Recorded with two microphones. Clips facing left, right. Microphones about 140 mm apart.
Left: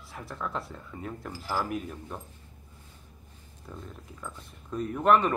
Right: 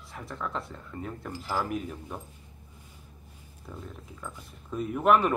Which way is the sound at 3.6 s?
Centre (ahead or behind).